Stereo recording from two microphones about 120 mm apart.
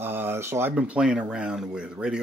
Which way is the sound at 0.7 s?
10° right (ahead or behind).